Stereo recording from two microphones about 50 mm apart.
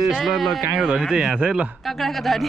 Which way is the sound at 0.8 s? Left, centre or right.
Centre.